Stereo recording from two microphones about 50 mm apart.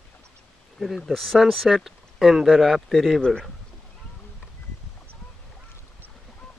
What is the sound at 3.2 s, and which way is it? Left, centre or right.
Speech, centre.